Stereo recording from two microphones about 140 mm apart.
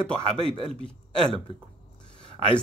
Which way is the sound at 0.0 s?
5° left (ahead or behind).